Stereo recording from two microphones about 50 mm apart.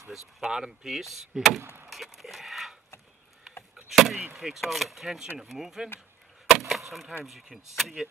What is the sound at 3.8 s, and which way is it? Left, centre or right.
Speech, centre.